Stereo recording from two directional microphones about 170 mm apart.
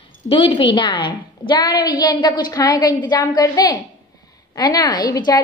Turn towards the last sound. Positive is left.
turn(degrees=20)  # may be behind; listen again after turning